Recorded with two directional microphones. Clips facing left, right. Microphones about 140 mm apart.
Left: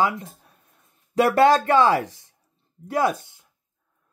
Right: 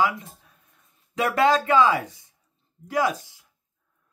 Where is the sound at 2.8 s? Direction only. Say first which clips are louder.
Left 4 dB; 50° left (ahead or behind).